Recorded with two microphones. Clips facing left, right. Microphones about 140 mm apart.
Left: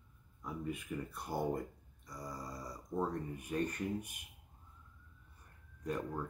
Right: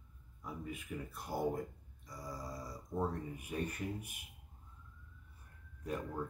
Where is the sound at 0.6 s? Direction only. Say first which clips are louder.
Left 4 dB; centre (ahead or behind).